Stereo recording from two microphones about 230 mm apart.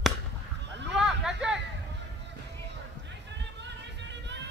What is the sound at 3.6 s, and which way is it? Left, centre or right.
Music, right.